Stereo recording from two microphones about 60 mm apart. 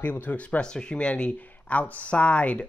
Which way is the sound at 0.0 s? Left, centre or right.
Left.